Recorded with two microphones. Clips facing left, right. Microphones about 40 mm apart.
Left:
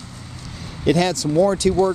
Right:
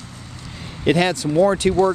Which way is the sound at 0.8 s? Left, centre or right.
Right.